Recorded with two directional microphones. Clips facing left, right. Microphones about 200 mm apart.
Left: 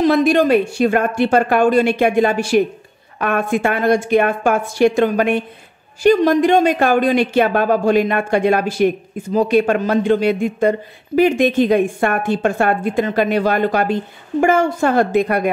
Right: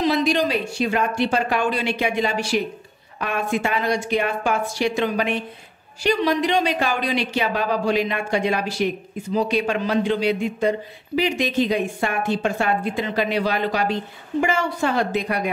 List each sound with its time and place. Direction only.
0.0 s speech: 50° left (ahead or behind)